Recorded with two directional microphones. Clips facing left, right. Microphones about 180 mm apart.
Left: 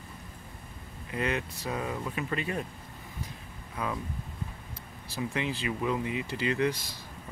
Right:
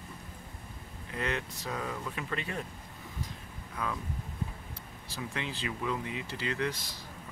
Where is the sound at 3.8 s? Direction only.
10° left (ahead or behind).